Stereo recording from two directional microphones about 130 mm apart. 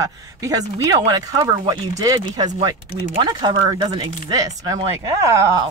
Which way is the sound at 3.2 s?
35° right (ahead or behind).